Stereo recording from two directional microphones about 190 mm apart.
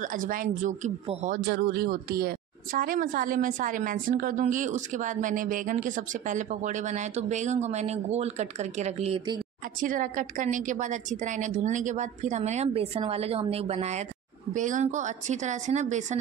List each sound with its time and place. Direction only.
0.0 s a woman's voice: 45° right (ahead or behind)
1.5 s a woman's voice: 55° right (ahead or behind); by 9.4 s 30° right (ahead or behind)
9.8 s a woman's voice: 45° right (ahead or behind)